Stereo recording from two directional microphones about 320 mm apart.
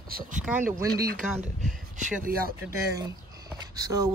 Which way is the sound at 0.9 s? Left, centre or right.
Right.